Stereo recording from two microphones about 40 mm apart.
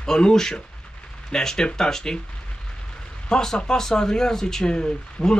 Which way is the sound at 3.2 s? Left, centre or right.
Centre.